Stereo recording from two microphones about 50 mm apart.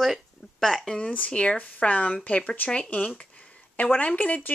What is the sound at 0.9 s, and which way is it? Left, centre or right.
Speech, left.